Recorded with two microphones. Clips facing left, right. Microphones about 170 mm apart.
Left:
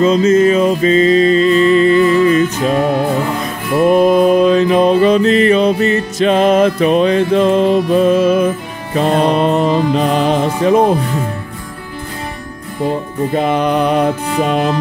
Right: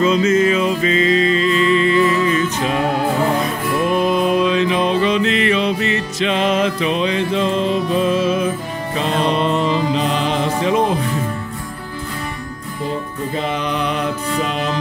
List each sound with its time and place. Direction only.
0.0 s music: 35° left (ahead or behind)
3.7 s mantra: 45° left (ahead or behind)
8.9 s music: 45° left (ahead or behind)
13.3 s music: 55° left (ahead or behind)